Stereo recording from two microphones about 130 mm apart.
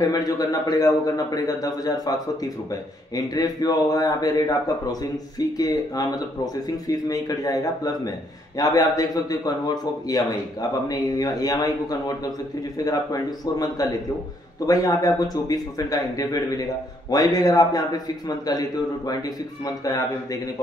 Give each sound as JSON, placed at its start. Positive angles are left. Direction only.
{"t": 0.0, "sound": "a man's voice", "side_deg": 30}
{"t": 5.6, "sound": "a man's voice", "side_deg": 30}
{"t": 10.9, "sound": "a man's voice", "side_deg": 30}